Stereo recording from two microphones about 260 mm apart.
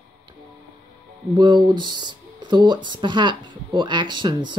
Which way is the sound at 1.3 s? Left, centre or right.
Centre.